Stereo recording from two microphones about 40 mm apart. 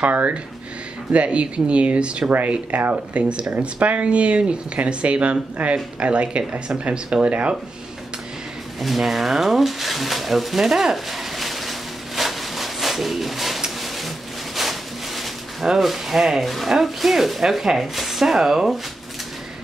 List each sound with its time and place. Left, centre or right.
0.0 s speech: right
1.1 s speech: right
8.8 s speech: centre
11.3 s a sound: centre
15.7 s speech: centre